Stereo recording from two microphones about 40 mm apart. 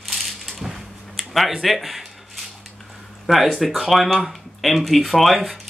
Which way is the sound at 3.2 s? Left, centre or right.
Centre.